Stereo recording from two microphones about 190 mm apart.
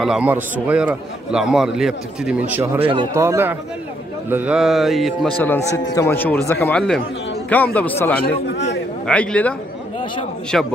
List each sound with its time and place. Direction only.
0.0 s a man's voice: 5° right (ahead or behind)
2.8 s speech: 25° right (ahead or behind)
3.2 s a man's voice: 15° right (ahead or behind)
5.4 s a man's voice: 15° left (ahead or behind)